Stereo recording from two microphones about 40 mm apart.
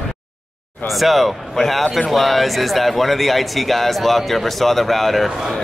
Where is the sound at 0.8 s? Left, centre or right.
Centre.